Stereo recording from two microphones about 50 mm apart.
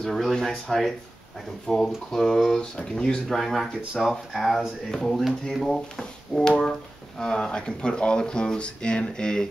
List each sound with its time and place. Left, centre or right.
0.0 s speech: centre
3.3 s speech: centre